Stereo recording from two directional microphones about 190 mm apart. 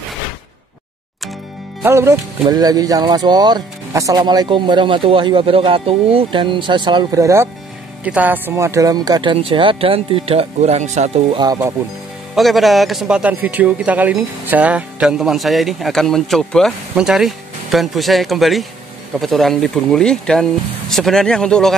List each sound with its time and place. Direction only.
1.8 s speech: 15° right (ahead or behind); by 11.1 s 35° right (ahead or behind)
11.3 s speech: 20° right (ahead or behind)
12.4 s a man's voice: centre (ahead or behind)